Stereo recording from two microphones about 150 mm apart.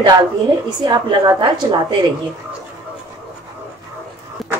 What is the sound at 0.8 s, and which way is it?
Speech, 30° right (ahead or behind).